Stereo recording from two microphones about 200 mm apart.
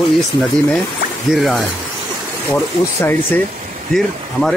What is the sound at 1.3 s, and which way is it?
Speech, centre (ahead or behind).